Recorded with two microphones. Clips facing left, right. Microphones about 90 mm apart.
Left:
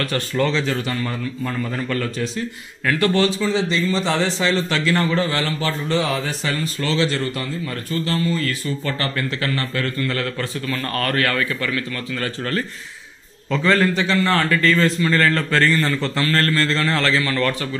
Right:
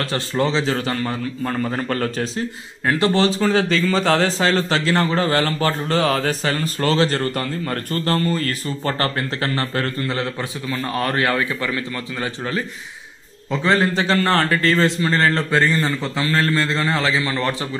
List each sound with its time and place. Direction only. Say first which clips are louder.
0.0 s a man's voice: even; 25° right (ahead or behind)
0.7 s a man's voice: right 2 dB; 40° right (ahead or behind)
3.3 s a man's voice: right 2 dB; 55° right (ahead or behind); by 10.0 s 35° right (ahead or behind)
10.0 s a man's voice: even; 20° right (ahead or behind)
13.5 s a man's voice: even; 25° right (ahead or behind)
15.5 s a man's voice: even; 15° right (ahead or behind)